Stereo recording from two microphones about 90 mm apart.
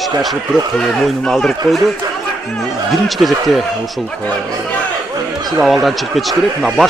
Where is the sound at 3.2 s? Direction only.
Centre (ahead or behind).